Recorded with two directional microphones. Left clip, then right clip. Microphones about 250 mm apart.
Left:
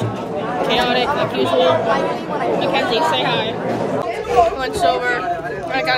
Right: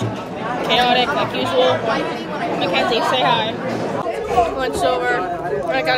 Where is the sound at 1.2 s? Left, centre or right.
Centre.